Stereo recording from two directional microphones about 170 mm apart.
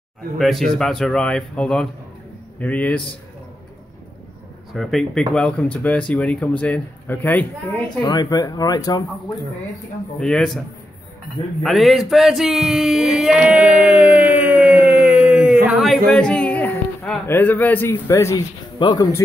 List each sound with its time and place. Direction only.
0.4 s a man's voice: centre (ahead or behind)
4.7 s speech: centre (ahead or behind)
8.0 s speech: 25° left (ahead or behind)
10.2 s a man's voice: 5° left (ahead or behind)
11.6 s speech: centre (ahead or behind); by 19.2 s 25° left (ahead or behind)